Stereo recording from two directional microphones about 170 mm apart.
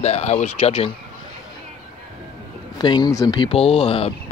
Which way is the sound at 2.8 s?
25° left (ahead or behind).